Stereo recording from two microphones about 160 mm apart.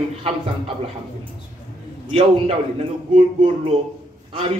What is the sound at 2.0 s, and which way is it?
Speech, 35° right (ahead or behind).